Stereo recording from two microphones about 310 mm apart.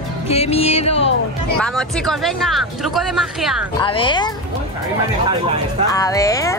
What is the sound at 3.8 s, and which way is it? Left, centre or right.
Speech, centre.